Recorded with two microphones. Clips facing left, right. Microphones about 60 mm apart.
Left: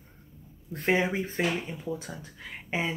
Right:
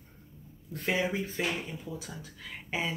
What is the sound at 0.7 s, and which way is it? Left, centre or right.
Speech, left.